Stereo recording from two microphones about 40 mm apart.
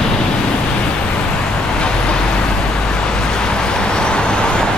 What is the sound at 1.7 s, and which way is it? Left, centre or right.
Vehicle, left.